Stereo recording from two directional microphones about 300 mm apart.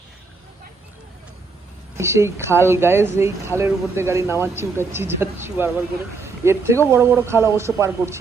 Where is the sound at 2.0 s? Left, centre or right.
Centre.